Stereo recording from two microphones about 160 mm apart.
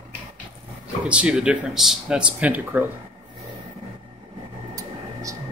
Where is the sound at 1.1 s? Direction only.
5° right (ahead or behind).